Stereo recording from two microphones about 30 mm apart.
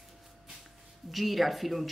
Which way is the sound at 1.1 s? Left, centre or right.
Centre.